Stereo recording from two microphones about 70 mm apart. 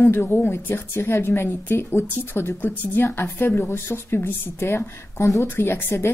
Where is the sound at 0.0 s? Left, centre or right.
Left.